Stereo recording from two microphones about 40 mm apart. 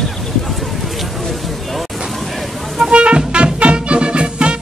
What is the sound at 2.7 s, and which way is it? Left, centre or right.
Music, centre.